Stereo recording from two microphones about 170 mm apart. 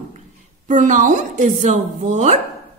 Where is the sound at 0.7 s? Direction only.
50° right (ahead or behind).